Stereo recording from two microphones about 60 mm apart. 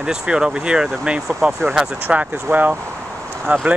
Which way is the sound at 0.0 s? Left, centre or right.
Centre.